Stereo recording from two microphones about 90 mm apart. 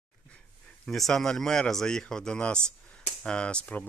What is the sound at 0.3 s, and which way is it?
Speech, 10° left (ahead or behind).